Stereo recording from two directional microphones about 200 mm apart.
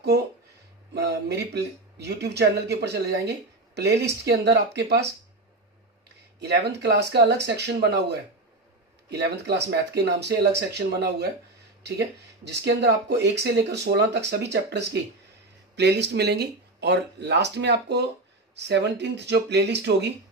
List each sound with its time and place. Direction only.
0.9 s speech: 55° right (ahead or behind)
6.4 s speech: 55° right (ahead or behind)